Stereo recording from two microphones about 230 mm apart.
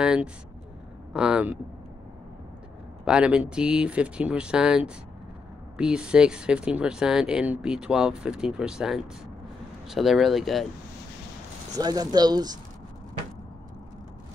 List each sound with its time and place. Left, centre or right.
0.0 s speech: centre
3.1 s speech: centre
11.8 s speech: centre